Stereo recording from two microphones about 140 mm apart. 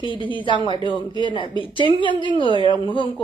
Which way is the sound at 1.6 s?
35° right (ahead or behind).